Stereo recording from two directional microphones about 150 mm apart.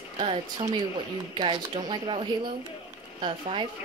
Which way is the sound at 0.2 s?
35° right (ahead or behind).